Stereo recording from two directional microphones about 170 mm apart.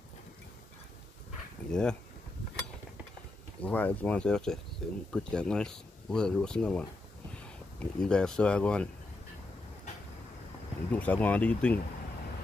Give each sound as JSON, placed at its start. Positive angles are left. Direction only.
{"t": 1.7, "sound": "speech", "side_deg": 5}
{"t": 3.6, "sound": "speech", "side_deg": 10}
{"t": 8.0, "sound": "speech", "side_deg": 5}
{"t": 10.9, "sound": "speech", "side_deg": 10}